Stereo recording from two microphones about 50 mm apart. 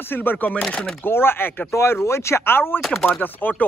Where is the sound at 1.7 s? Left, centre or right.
Left.